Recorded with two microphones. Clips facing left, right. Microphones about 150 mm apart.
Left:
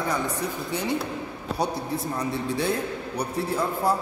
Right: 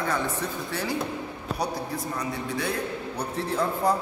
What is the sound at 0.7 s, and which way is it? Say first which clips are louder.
A man's voice: left 2 dB; 20° left (ahead or behind).